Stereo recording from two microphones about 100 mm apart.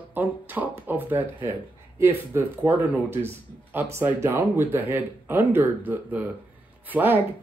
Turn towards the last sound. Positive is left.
turn(degrees=-20)  # may be behind; listen again after turning